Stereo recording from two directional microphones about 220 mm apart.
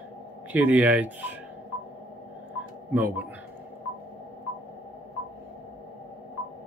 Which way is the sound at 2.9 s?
10° right (ahead or behind).